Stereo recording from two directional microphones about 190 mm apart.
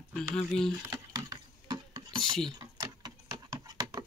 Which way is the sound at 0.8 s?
20° right (ahead or behind).